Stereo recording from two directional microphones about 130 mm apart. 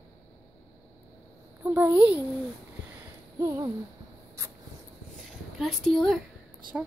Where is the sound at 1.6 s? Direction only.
20° right (ahead or behind).